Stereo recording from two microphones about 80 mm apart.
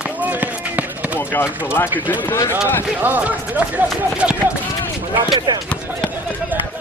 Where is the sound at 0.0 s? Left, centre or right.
Centre.